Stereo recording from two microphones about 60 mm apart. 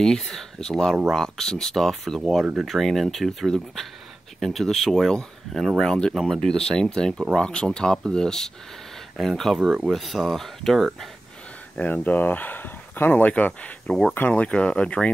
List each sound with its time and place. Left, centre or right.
0.0 s speech: centre
11.8 s speech: left